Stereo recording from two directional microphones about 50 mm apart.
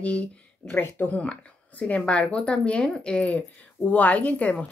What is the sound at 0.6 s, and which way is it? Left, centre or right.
Speech, left.